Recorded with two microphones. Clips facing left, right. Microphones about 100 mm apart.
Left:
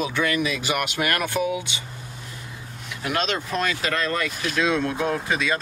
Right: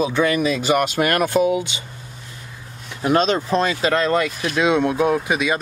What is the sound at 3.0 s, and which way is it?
Speech, 30° right (ahead or behind).